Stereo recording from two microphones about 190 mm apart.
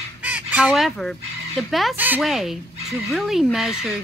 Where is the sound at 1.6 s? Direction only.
Centre (ahead or behind).